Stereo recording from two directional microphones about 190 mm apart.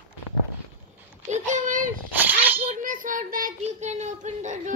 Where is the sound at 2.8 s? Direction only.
45° right (ahead or behind).